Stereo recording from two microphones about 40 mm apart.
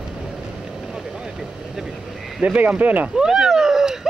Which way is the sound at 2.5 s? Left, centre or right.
Right.